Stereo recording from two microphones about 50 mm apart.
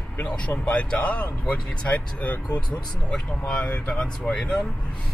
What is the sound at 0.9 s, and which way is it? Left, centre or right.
Speech, left.